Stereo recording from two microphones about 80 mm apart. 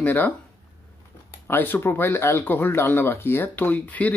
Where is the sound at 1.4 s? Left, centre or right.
Left.